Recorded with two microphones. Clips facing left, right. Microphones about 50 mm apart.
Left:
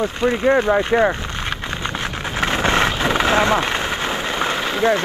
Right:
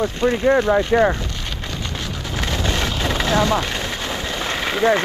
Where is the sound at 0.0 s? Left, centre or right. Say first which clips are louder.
Even; left.